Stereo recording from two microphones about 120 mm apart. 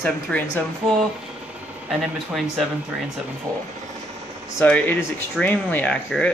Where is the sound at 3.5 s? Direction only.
30° right (ahead or behind).